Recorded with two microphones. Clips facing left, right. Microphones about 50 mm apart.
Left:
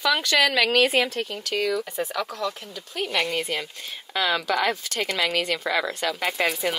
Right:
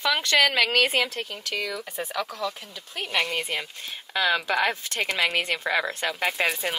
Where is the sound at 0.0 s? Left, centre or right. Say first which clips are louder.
Left 1 dB; right.